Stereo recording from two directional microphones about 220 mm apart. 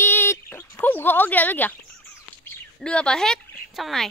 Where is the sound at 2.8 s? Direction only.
5° left (ahead or behind).